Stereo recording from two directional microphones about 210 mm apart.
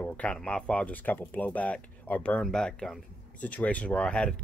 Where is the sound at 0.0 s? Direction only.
5° left (ahead or behind).